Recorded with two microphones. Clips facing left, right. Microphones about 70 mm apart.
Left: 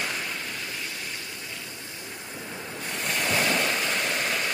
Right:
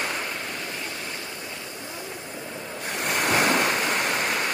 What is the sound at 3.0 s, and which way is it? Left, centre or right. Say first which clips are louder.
Waves: right 4 dB; right.